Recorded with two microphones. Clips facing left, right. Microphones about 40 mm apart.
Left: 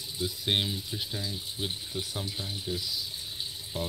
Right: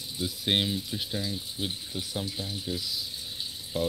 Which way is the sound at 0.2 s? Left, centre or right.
Centre.